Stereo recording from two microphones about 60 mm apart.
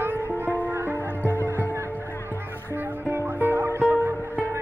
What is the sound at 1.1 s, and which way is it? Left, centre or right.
Music, left.